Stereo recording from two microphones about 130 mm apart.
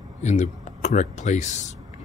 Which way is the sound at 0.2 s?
65° left (ahead or behind).